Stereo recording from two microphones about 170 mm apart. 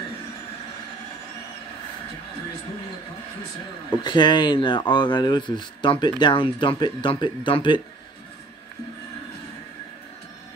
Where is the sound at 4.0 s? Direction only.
25° left (ahead or behind).